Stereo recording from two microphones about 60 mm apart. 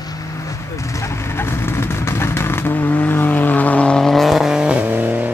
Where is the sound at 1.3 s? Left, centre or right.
Left; by 4.7 s centre.